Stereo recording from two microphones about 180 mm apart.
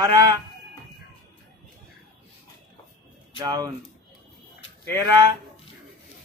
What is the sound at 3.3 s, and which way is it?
Speech, 20° right (ahead or behind).